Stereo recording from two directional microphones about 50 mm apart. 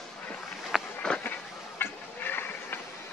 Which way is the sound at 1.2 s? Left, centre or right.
Left.